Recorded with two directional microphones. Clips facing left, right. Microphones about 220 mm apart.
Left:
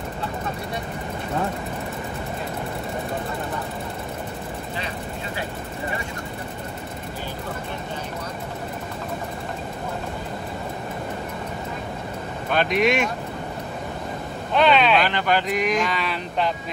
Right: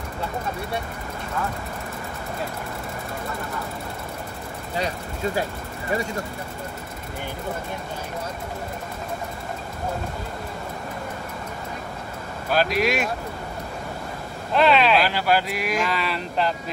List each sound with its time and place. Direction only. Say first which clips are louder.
4.7 s vehicle: right 3 dB; 40° right (ahead or behind)
12.4 s speech: left 1 dB; 5° right (ahead or behind)
14.5 s speech: even; centre (ahead or behind)